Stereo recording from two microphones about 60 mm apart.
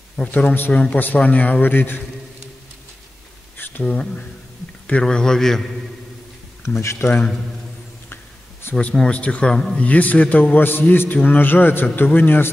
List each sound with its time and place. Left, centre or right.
0.2 s a man's voice: left
3.5 s a sound: left
3.8 s a man's voice: centre
6.6 s speech: left
8.7 s a man's voice: centre
9.8 s a man's voice: left